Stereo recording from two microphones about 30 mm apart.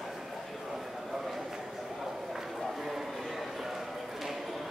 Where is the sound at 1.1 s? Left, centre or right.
Centre.